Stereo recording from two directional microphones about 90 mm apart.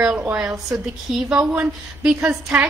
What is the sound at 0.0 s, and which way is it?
A woman's voice, 10° right (ahead or behind).